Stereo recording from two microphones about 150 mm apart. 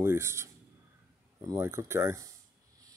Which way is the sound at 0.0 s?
15° right (ahead or behind).